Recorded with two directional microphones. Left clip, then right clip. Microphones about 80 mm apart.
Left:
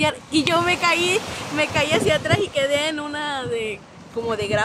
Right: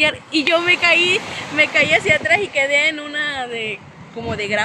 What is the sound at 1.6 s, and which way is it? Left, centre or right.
A woman's voice, left.